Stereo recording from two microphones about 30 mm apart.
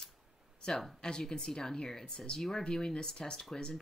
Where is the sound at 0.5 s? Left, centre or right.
Left.